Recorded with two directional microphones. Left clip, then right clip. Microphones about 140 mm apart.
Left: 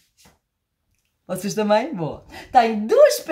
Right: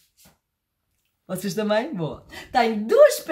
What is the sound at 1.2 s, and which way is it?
A woman's voice, 25° left (ahead or behind).